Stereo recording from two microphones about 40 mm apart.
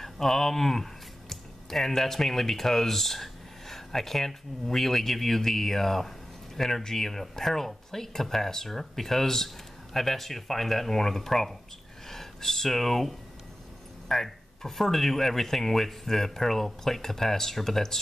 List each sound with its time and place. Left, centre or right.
0.0 s speech: centre